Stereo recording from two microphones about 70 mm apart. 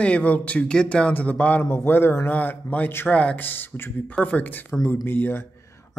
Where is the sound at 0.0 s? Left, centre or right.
Centre.